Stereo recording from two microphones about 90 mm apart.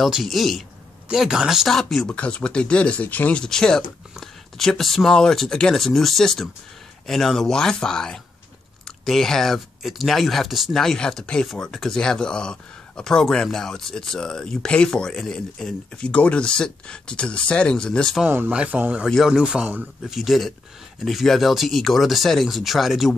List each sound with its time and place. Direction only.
0.0 s speech: centre (ahead or behind)
2.0 s speech: 10° left (ahead or behind)
18.2 s speech: 20° right (ahead or behind)
19.0 s speech: centre (ahead or behind)
20.1 s speech: centre (ahead or behind)